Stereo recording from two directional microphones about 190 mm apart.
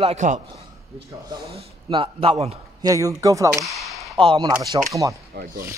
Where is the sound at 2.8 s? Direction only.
20° right (ahead or behind).